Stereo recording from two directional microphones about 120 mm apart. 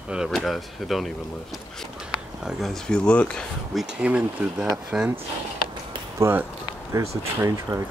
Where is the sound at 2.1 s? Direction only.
5° left (ahead or behind).